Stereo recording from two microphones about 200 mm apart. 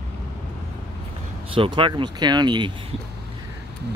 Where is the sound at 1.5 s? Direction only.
25° right (ahead or behind).